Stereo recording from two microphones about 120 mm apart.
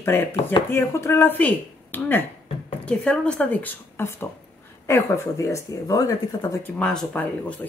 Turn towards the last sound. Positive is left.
turn(degrees=10)  # may be behind; listen again after turning